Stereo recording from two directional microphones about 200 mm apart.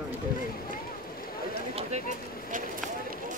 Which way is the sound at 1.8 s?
35° right (ahead or behind).